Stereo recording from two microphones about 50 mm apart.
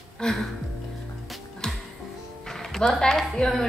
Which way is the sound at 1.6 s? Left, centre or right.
Centre.